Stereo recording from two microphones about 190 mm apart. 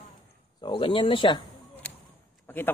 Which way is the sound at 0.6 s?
25° left (ahead or behind).